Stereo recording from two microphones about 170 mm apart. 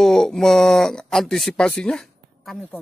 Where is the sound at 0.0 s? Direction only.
5° left (ahead or behind).